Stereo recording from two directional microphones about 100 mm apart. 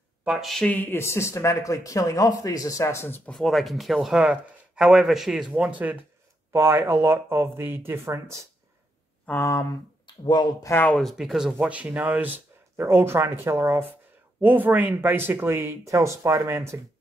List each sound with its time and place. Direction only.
0.2 s speech: 5° right (ahead or behind)
0.7 s speech: 20° left (ahead or behind)
3.3 s speech: 5° left (ahead or behind); by 5.9 s 15° right (ahead or behind)
6.5 s speech: 25° right (ahead or behind)
9.4 s speech: 30° left (ahead or behind)
10.0 s speech: 50° left (ahead or behind)
10.6 s speech: 25° left (ahead or behind)
11.0 s speech: centre (ahead or behind); by 12.3 s 15° right (ahead or behind)
12.7 s speech: 25° right (ahead or behind)